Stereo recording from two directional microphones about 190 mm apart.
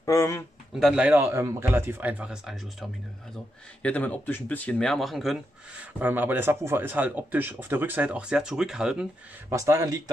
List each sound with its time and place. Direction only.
0.0 s a sound: 15° left (ahead or behind)
0.7 s speech: 5° right (ahead or behind)
9.5 s speech: 15° right (ahead or behind)